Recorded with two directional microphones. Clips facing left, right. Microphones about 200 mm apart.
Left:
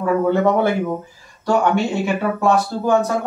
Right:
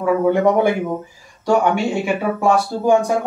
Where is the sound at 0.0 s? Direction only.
10° right (ahead or behind).